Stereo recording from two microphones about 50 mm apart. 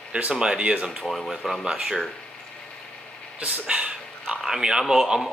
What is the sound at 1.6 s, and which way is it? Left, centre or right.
Speech, centre.